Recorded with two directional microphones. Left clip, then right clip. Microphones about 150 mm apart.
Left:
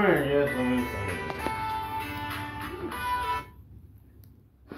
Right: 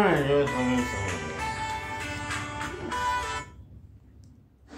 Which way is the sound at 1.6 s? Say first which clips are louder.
Left 1 dB; 5° right (ahead or behind).